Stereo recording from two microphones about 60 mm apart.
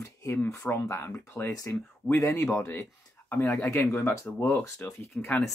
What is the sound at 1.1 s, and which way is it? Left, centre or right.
Speech, left.